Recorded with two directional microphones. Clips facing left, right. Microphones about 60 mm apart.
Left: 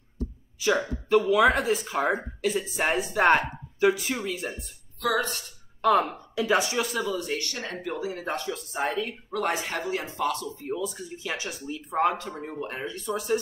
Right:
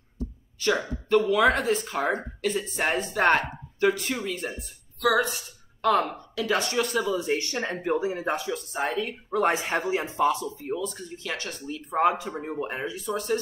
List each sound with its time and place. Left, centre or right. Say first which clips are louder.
0.7 s speech: even; centre
5.0 s a man's voice: right 3 dB; centre
5.8 s speech: left 1 dB; centre
6.3 s speech: left 1 dB; centre
7.2 s speech: right 4 dB; right
8.2 s a man's voice: right 3 dB; centre
8.5 s speech: even; centre
9.3 s speech: right 5 dB; right
10.8 s speech: even; centre
12.3 s a man's voice: right 3 dB; centre
12.9 s speech: left 2 dB; centre